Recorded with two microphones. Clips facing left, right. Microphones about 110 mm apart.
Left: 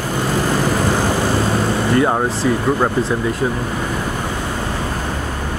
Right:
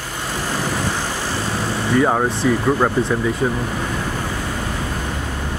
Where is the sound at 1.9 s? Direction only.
Centre (ahead or behind).